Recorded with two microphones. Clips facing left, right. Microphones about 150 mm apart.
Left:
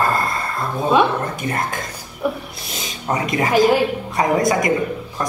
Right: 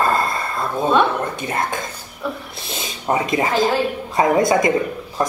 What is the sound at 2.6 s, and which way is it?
Speech, 25° right (ahead or behind).